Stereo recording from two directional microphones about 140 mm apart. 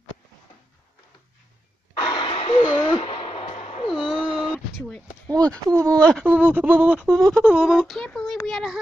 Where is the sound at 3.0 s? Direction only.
45° left (ahead or behind).